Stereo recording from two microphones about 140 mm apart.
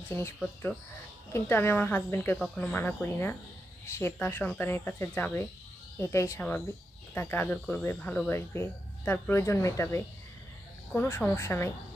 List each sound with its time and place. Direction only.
1.3 s speech: 15° left (ahead or behind)
2.3 s speech: 5° left (ahead or behind)